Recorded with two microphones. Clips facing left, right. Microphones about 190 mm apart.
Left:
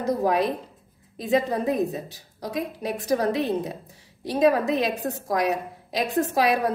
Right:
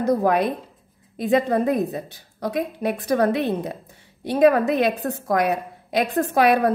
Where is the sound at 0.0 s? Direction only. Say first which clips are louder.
Right 3 dB; 55° right (ahead or behind).